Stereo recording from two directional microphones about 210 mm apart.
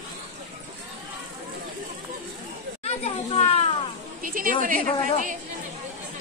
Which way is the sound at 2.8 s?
30° left (ahead or behind).